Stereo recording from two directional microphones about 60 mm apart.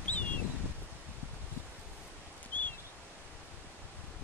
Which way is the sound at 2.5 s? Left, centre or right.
Left.